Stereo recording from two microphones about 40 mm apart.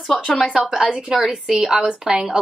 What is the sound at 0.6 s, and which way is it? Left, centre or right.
A woman's voice, centre.